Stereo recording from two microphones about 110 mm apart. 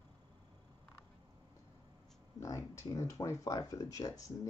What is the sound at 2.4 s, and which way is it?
Speech, 30° left (ahead or behind).